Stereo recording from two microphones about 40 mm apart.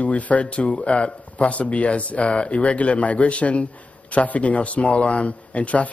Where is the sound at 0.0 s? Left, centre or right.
Left.